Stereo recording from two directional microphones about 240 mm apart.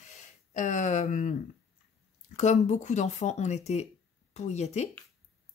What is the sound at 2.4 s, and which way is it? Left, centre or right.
Speech, left.